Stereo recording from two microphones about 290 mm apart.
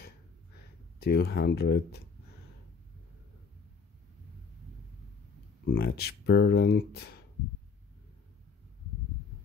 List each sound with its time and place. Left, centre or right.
1.0 s speech: left
5.7 s speech: left